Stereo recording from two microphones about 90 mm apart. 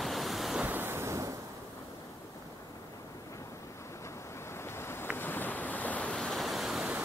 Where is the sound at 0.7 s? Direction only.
25° right (ahead or behind).